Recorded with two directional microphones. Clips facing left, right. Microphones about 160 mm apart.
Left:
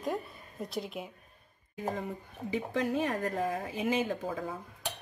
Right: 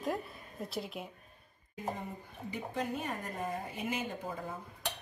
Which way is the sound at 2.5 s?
90° left.